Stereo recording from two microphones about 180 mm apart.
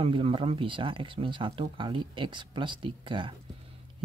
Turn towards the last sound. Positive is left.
turn(degrees=-25)  # may be behind; listen again after turning